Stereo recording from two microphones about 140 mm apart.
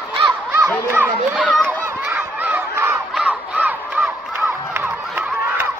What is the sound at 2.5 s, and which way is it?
Crowd, 15° right (ahead or behind).